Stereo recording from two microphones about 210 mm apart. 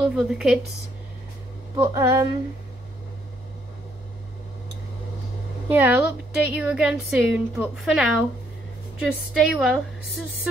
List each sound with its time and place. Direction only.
0.1 s a woman's voice: centre (ahead or behind)
1.8 s a sound: 15° right (ahead or behind)
5.7 s a woman's voice: 10° right (ahead or behind)